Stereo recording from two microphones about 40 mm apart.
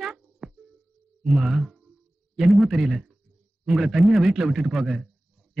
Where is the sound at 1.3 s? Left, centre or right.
Centre.